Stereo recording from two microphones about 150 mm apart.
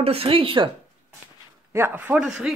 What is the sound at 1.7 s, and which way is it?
Speech, 15° right (ahead or behind).